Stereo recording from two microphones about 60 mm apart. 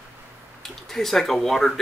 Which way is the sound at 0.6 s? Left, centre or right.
Centre.